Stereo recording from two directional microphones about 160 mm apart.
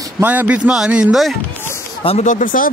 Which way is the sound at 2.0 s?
35° left (ahead or behind).